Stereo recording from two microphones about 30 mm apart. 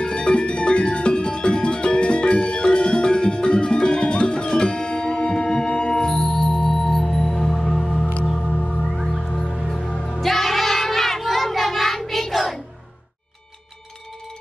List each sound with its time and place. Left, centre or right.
0.0 s music: left; by 8.1 s centre
9.1 s music: left
10.2 s child singing: centre